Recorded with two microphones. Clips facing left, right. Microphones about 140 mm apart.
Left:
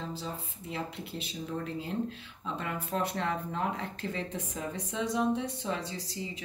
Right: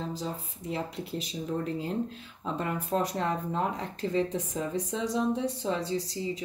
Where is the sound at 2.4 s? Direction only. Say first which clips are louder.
Right 4 dB; 40° right (ahead or behind).